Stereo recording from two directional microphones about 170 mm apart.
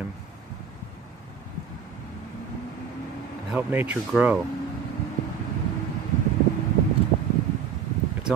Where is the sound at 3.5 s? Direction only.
10° right (ahead or behind).